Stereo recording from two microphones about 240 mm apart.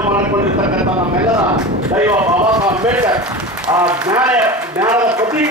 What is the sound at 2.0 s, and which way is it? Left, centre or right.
A man's voice, centre.